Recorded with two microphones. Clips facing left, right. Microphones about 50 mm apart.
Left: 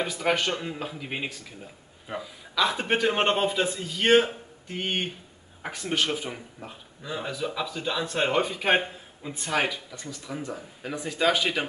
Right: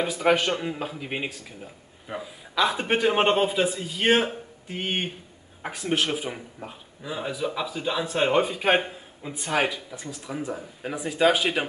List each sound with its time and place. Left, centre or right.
0.0 s speech: centre
2.5 s a man's voice: centre
2.8 s a man's voice: centre
9.8 s speech: right